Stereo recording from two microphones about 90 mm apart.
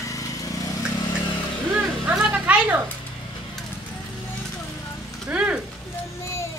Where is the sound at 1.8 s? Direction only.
10° right (ahead or behind).